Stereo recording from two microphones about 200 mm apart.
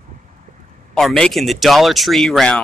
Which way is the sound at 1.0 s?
Centre (ahead or behind).